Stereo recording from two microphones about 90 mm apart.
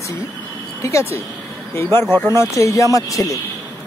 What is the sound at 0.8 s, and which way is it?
Speech, 35° left (ahead or behind).